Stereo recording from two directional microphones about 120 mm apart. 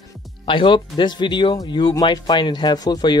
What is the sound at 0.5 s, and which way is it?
Speech, 40° left (ahead or behind).